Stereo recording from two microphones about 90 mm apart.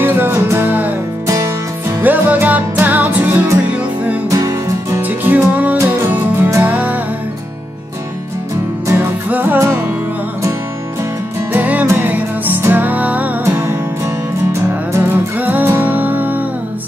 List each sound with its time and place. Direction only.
0.0 s music: 25° right (ahead or behind)
1.2 s music: 35° right (ahead or behind)
2.0 s music: 20° right (ahead or behind)
4.3 s music: 40° right (ahead or behind)
5.0 s music: 20° right (ahead or behind)
9.3 s music: 20° right (ahead or behind)
11.5 s music: 20° right (ahead or behind)
14.9 s music: 25° right (ahead or behind)